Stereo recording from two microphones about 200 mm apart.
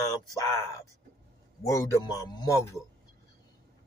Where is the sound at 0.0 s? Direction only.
20° left (ahead or behind).